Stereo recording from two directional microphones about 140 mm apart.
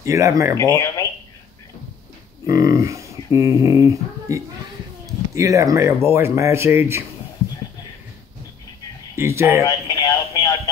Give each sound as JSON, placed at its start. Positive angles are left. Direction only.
{"t": 0.0, "sound": "speech", "side_deg": -20}
{"t": 2.4, "sound": "speech", "side_deg": -25}
{"t": 9.1, "sound": "speech", "side_deg": -20}
{"t": 9.7, "sound": "music", "side_deg": 25}